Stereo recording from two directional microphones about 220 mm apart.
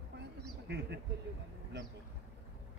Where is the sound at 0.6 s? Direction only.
50° right (ahead or behind).